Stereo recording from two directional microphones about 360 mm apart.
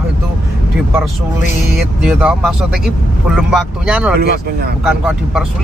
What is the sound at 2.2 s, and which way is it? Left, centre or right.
Speech, centre.